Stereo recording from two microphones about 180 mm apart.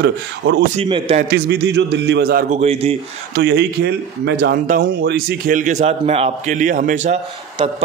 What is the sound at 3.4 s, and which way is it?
A man's voice, 70° right (ahead or behind).